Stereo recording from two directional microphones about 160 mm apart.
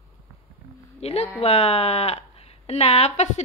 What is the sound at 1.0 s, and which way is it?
Speech, 40° left (ahead or behind).